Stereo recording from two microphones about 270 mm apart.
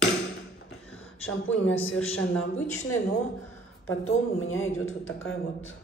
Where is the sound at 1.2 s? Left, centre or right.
Left.